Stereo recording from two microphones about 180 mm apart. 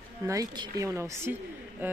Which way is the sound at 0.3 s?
20° right (ahead or behind).